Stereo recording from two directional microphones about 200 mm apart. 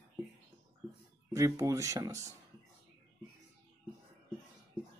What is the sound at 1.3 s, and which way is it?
Speech, 15° right (ahead or behind).